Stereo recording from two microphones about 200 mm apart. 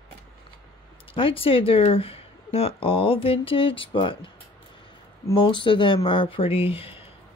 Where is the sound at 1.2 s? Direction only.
25° left (ahead or behind).